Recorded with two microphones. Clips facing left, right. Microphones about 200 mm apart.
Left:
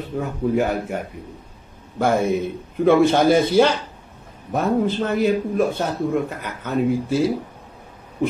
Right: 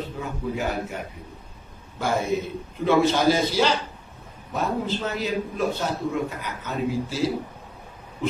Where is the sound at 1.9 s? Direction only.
55° left (ahead or behind).